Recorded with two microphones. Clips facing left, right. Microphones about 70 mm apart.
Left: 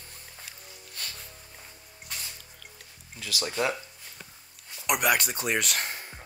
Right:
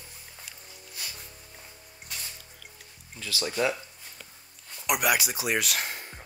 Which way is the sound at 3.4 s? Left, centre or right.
Centre.